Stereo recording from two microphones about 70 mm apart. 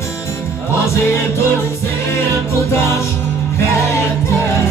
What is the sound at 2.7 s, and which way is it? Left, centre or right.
Music, left.